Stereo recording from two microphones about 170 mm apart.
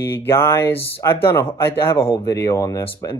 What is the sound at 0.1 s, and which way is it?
Speech, 15° left (ahead or behind).